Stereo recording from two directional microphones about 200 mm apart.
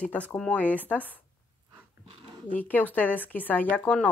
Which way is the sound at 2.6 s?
10° left (ahead or behind).